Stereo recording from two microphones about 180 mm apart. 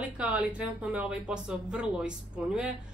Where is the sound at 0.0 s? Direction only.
5° right (ahead or behind).